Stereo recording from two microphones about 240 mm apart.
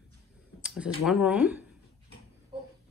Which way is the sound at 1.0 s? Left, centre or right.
Centre.